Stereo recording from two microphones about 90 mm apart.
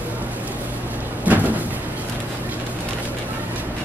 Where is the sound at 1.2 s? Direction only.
20° right (ahead or behind).